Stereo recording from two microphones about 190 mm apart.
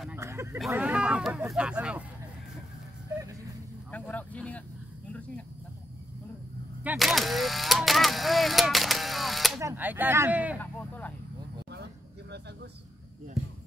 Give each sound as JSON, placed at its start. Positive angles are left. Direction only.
{"t": 0.1, "sound": "a sound", "side_deg": -15}
{"t": 0.7, "sound": "speech", "side_deg": -10}
{"t": 3.9, "sound": "speech", "side_deg": 5}
{"t": 6.8, "sound": "single-lens reflex camera", "side_deg": -5}
{"t": 9.6, "sound": "speech", "side_deg": -10}
{"t": 10.6, "sound": "a sound", "side_deg": 10}
{"t": 11.7, "sound": "vehicle", "side_deg": -60}